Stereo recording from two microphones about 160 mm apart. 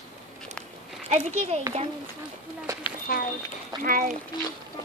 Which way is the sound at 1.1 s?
45° right (ahead or behind).